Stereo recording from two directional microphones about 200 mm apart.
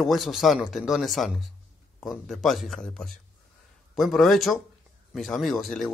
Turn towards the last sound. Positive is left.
turn(degrees=0)  # may be behind; listen again after turning